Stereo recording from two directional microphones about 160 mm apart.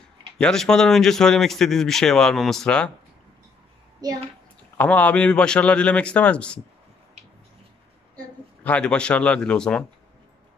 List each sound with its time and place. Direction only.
0.4 s a man's voice: 5° left (ahead or behind)
4.0 s a child's voice: 25° right (ahead or behind)
4.7 s a man's voice: 10° left (ahead or behind)
8.6 s a man's voice: 5° left (ahead or behind)